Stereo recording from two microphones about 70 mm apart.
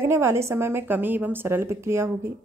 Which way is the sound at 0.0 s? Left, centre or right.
Right.